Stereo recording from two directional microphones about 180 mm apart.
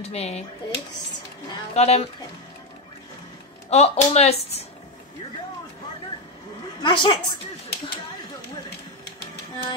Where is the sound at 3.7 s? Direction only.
35° left (ahead or behind).